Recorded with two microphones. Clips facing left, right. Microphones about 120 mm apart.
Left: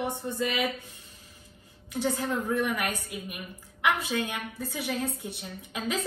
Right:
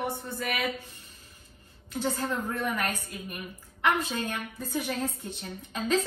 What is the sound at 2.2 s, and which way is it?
A woman's voice, 15° left (ahead or behind).